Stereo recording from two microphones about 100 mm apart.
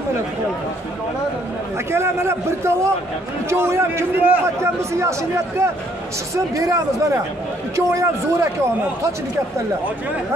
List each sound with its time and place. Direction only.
1.9 s a man's voice: 25° right (ahead or behind)
6.3 s a man's voice: 35° right (ahead or behind)